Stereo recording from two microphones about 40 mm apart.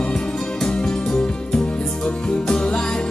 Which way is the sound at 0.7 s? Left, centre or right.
Left.